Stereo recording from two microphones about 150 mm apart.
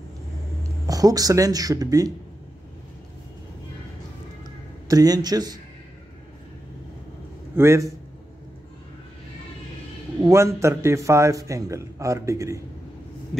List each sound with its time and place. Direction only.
0.8 s a man's voice: 25° right (ahead or behind)
4.8 s a man's voice: 25° right (ahead or behind)
7.5 s a man's voice: 20° right (ahead or behind)
10.2 s a man's voice: 20° right (ahead or behind)